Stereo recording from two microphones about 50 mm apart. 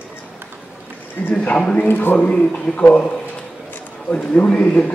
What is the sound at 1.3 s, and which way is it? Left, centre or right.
Speech, left.